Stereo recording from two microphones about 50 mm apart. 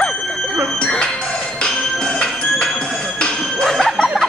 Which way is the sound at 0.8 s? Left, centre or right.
Centre.